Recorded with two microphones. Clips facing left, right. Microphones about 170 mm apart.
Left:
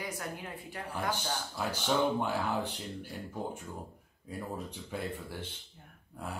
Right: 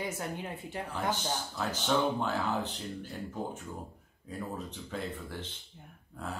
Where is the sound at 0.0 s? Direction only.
25° right (ahead or behind).